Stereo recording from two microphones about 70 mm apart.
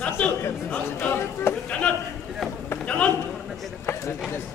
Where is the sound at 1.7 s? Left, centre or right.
Centre.